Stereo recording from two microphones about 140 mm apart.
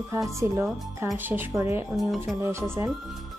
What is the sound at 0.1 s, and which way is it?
Speech, 20° right (ahead or behind).